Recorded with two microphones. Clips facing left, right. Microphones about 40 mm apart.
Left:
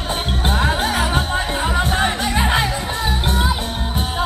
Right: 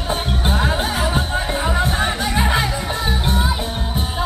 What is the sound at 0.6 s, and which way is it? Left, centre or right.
Music, left.